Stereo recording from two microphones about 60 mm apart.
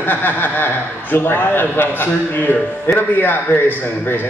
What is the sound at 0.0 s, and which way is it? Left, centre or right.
A man's voice, left.